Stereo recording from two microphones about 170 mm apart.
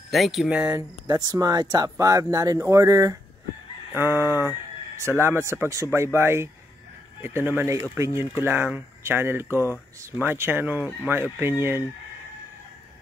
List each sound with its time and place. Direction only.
0.1 s speech: centre (ahead or behind)